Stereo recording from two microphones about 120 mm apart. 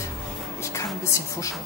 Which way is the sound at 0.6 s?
25° left (ahead or behind).